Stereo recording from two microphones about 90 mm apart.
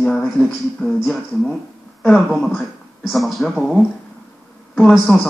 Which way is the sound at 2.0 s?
Centre (ahead or behind).